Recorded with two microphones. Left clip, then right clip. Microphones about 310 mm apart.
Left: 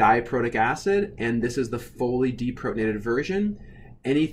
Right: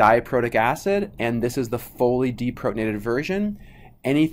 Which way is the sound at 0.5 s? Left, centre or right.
Right.